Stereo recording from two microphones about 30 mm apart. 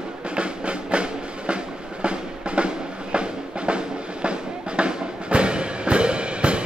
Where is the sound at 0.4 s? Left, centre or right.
Right.